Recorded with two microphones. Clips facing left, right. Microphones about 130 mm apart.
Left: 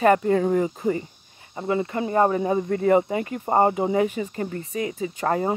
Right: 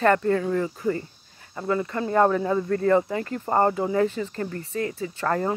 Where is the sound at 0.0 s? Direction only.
15° left (ahead or behind).